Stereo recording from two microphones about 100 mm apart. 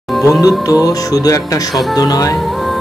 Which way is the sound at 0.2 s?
35° left (ahead or behind).